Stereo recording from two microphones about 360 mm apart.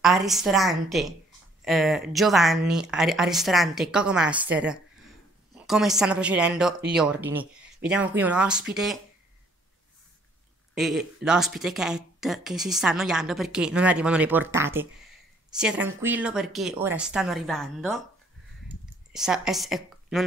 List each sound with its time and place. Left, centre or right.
0.0 s speech: centre
10.7 s speech: centre
19.1 s a woman's voice: centre